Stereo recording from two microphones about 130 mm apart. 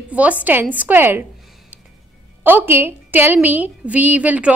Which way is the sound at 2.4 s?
15° right (ahead or behind).